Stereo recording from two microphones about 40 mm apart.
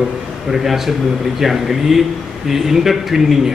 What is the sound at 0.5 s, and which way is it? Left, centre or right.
A man's voice, centre.